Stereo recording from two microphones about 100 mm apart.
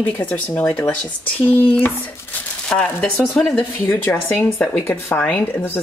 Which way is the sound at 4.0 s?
20° left (ahead or behind).